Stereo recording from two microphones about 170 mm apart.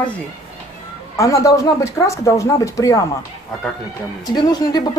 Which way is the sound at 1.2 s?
20° left (ahead or behind).